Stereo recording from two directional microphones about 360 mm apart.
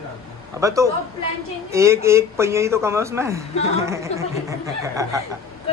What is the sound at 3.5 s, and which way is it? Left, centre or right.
Speech, centre.